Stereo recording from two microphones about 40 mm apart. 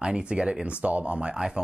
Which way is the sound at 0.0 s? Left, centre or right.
Right.